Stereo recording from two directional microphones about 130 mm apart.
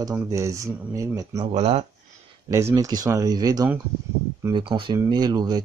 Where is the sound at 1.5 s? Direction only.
55° right (ahead or behind).